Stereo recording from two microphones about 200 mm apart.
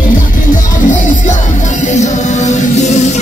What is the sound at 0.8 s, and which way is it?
Music, 35° left (ahead or behind).